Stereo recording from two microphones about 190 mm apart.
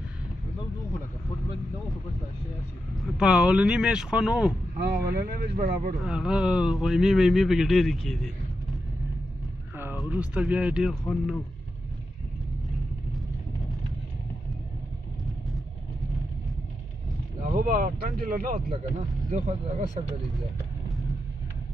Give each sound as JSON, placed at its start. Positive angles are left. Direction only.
{"t": 3.0, "sound": "a man's voice", "side_deg": -5}
{"t": 4.7, "sound": "speech", "side_deg": -55}
{"t": 5.9, "sound": "a man's voice", "side_deg": -5}
{"t": 9.9, "sound": "a man's voice", "side_deg": -5}
{"t": 17.4, "sound": "speech", "side_deg": -45}